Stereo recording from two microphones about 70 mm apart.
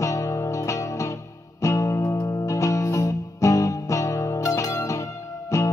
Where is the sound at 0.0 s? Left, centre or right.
Left.